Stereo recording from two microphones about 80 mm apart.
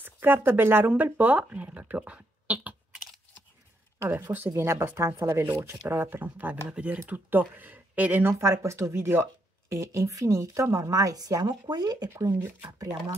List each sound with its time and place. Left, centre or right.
0.0 s speech: right
4.5 s speech: right
11.4 s speech: right
12.3 s speech: right